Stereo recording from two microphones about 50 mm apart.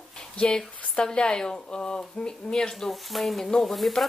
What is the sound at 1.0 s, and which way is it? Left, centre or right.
Speech, centre.